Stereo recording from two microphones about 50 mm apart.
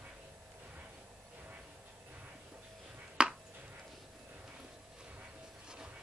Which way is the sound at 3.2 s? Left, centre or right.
Centre.